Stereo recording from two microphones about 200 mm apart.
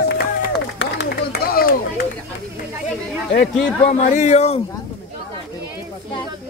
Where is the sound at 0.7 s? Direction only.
55° left (ahead or behind).